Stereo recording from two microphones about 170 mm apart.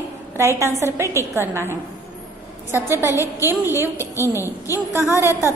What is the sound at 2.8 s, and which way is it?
Speech, 15° right (ahead or behind).